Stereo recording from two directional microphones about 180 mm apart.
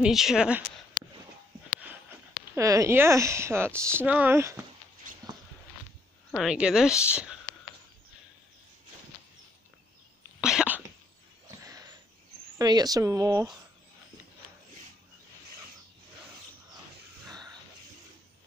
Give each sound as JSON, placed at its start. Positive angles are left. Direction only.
{"t": 0.0, "sound": "a woman's voice", "side_deg": 0}
{"t": 1.8, "sound": "speech", "side_deg": -10}
{"t": 5.1, "sound": "a sound", "side_deg": -50}
{"t": 6.3, "sound": "a woman's voice", "side_deg": -5}
{"t": 10.4, "sound": "a sound", "side_deg": -5}
{"t": 12.5, "sound": "speech", "side_deg": -20}